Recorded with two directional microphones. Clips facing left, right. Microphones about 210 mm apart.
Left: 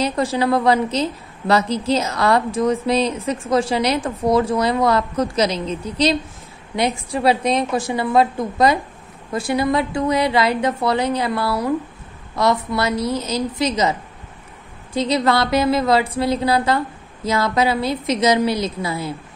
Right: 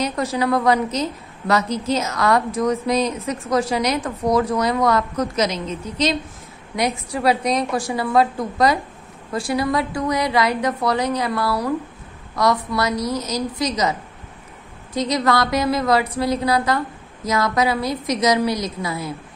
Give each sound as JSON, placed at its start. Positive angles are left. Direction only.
{"t": 0.0, "sound": "a woman's voice", "side_deg": 30}
{"t": 15.0, "sound": "a woman's voice", "side_deg": 30}